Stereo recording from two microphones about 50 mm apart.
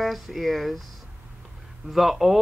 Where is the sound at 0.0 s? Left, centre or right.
Centre.